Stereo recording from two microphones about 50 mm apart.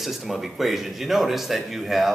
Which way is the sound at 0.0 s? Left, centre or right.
Centre.